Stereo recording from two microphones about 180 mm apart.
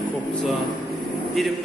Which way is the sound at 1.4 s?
Centre (ahead or behind).